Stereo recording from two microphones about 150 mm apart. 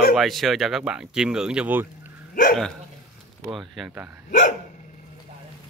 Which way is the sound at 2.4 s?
65° left (ahead or behind).